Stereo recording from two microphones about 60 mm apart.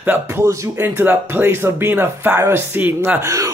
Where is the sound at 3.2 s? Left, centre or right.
Right.